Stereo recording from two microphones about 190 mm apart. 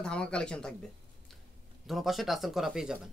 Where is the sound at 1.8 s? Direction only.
Centre (ahead or behind).